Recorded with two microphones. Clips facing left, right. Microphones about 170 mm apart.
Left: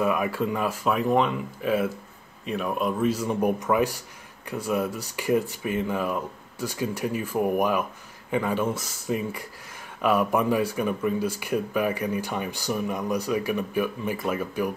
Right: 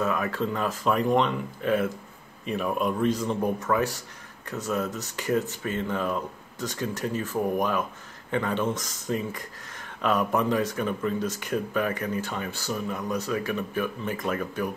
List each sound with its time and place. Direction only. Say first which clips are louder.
0.0 s speech: left 2 dB; 10° left (ahead or behind)